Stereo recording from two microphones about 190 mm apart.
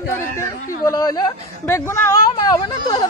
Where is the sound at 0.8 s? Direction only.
20° left (ahead or behind).